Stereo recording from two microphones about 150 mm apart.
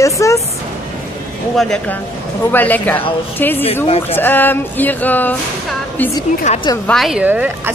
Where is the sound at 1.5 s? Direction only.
Centre (ahead or behind).